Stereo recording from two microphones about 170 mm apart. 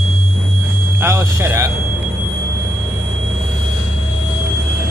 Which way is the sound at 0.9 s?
15° right (ahead or behind).